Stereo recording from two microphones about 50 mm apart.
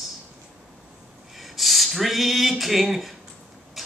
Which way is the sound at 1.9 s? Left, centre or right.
Centre.